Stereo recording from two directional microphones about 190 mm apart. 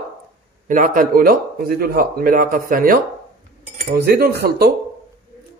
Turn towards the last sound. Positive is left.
turn(degrees=-55)  # may be behind; listen again after turning